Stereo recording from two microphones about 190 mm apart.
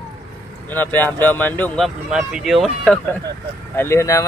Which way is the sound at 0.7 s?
10° left (ahead or behind).